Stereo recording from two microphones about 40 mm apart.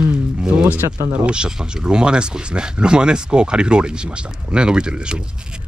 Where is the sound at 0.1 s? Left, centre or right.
Centre.